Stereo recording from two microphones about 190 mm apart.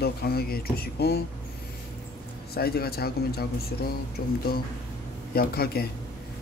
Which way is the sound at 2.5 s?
55° left (ahead or behind).